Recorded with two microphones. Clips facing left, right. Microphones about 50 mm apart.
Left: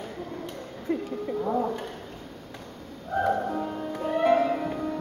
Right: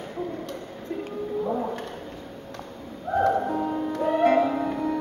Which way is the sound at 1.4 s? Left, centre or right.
Centre.